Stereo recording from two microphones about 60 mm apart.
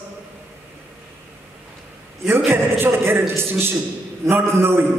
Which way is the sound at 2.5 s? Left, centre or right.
Right.